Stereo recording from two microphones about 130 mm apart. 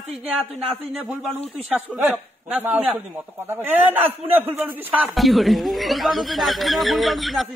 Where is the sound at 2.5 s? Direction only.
15° right (ahead or behind).